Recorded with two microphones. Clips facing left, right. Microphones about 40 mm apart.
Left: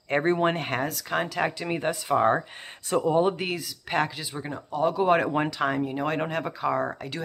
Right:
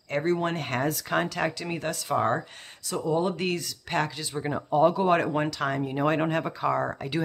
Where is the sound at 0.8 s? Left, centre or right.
Centre.